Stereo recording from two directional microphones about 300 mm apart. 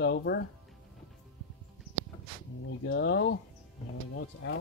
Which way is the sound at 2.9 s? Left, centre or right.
Left.